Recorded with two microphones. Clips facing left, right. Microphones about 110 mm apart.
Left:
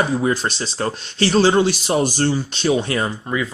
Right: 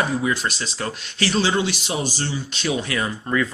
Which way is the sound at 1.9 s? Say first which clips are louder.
Left 8 dB; 50° left (ahead or behind).